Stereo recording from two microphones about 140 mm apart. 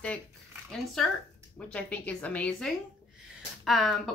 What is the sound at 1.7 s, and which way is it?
Speech, 10° left (ahead or behind).